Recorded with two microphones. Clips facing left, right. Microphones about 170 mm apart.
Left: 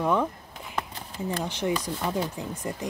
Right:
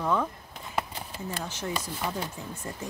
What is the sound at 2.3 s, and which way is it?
Speech, 15° left (ahead or behind).